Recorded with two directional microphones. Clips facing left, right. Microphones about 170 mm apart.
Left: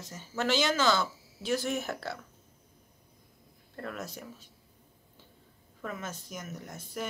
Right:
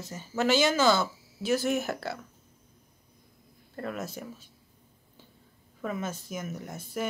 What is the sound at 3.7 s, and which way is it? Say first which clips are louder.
Speech: right 4 dB; 10° right (ahead or behind).